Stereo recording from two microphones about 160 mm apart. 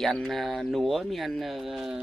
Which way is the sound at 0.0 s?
Centre (ahead or behind).